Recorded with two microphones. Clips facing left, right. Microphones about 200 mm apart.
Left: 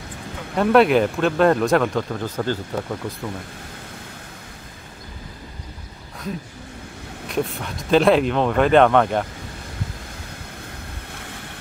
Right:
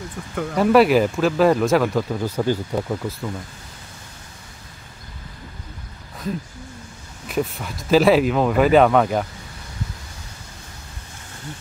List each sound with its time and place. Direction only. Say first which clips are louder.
0.6 s speech: even; centre (ahead or behind)
7.2 s speech: even; centre (ahead or behind)
11.1 s waves: right 4 dB; 60° left (ahead or behind)